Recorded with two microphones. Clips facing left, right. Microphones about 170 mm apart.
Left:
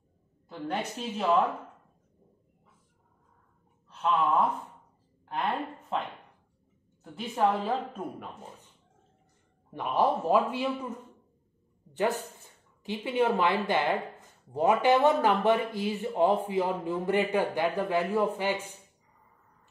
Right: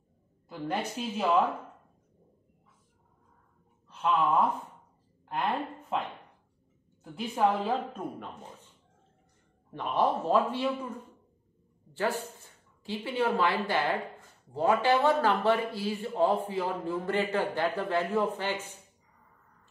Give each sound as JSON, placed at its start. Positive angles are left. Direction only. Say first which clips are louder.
{"t": 0.5, "sound": "a woman's voice", "louder": "even", "side_deg": 0}
{"t": 3.9, "sound": "a woman's voice", "louder": "even", "side_deg": 0}
{"t": 9.7, "sound": "a man's voice", "louder": "left 1 dB", "side_deg": 10}
{"t": 11.9, "sound": "a man's voice", "louder": "left 2 dB", "side_deg": 20}